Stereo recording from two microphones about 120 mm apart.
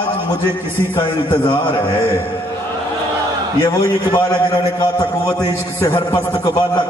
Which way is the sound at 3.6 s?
25° left (ahead or behind).